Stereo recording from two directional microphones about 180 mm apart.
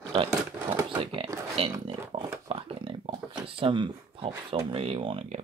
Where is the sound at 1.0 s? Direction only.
30° right (ahead or behind).